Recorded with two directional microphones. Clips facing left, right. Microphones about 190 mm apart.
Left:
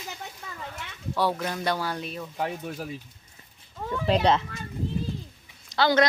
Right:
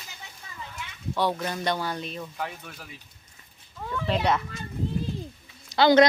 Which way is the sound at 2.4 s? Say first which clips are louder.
Left 5 dB; 40° left (ahead or behind).